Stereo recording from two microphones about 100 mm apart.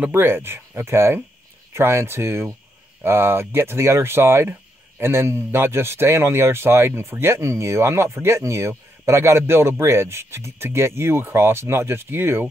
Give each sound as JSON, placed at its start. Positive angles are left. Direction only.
{"t": 0.0, "sound": "speech", "side_deg": -25}